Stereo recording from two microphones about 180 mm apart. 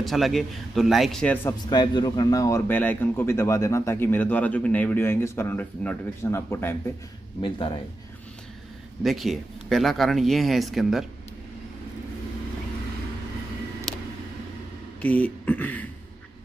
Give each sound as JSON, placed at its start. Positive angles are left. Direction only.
{"t": 0.0, "sound": "speech", "side_deg": 0}
{"t": 1.7, "sound": "speech", "side_deg": 25}
{"t": 7.4, "sound": "speech", "side_deg": 25}
{"t": 9.0, "sound": "speech", "side_deg": 0}
{"t": 15.0, "sound": "speech", "side_deg": 5}